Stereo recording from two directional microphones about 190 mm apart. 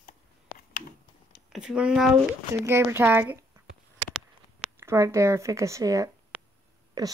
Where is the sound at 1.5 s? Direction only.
5° right (ahead or behind).